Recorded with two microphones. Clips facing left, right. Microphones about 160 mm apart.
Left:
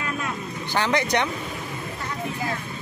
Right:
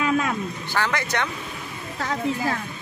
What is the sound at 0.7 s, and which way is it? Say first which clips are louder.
Speech: left 4 dB; 15° left (ahead or behind).